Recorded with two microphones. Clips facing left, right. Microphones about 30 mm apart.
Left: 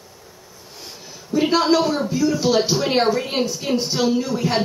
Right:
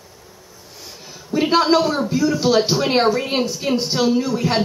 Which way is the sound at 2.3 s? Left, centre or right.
Centre.